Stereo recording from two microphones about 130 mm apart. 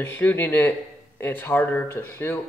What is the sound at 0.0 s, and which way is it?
Speech, 15° left (ahead or behind).